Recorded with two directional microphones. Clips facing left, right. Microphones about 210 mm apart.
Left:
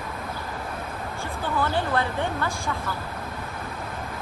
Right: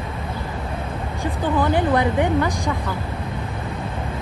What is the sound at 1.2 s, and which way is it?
Speech, 15° right (ahead or behind).